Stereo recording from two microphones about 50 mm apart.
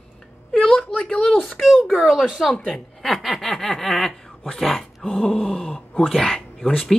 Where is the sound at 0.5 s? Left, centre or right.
Centre.